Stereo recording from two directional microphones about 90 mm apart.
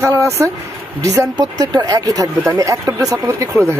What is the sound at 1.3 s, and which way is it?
Speech, 45° right (ahead or behind).